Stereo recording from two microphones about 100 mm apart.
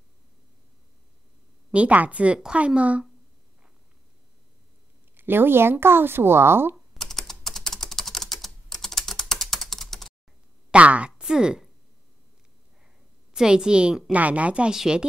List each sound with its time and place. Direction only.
1.7 s a woman's voice: 15° right (ahead or behind)
5.1 s speech: 20° right (ahead or behind)
6.9 s typing: centre (ahead or behind)
10.7 s a sound: 15° right (ahead or behind)
13.3 s a woman's voice: 5° right (ahead or behind)